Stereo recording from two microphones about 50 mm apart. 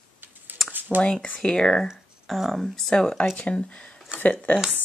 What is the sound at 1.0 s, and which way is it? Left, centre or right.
Speech, left.